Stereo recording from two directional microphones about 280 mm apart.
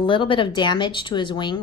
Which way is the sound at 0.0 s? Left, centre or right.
Centre.